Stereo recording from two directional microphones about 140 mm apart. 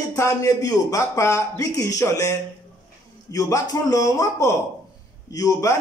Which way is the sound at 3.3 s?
25° left (ahead or behind).